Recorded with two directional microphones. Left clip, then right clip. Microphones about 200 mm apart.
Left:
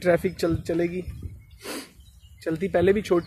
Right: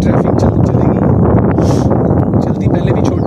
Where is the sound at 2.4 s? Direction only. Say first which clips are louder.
Right 6 dB; centre (ahead or behind).